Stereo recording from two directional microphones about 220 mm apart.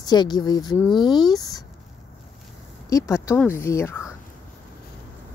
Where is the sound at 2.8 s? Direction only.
15° left (ahead or behind).